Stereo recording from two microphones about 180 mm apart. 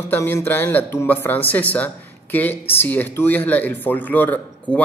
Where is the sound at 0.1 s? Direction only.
15° left (ahead or behind).